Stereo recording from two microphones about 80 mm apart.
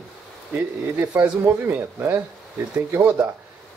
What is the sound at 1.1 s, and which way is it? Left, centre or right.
Speech, centre.